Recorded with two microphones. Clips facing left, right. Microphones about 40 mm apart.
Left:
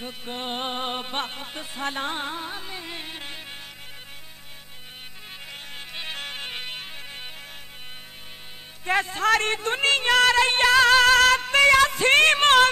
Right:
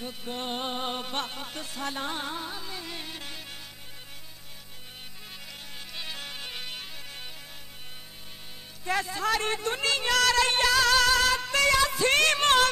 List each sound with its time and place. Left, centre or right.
0.0 s music: left
5.5 s music: left
8.8 s music: left
9.3 s music: left
11.1 s music: left